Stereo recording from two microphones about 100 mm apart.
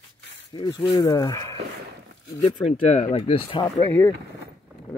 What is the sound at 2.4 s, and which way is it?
Speech, 80° left.